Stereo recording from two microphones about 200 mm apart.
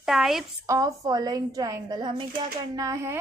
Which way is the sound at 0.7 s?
15° right (ahead or behind).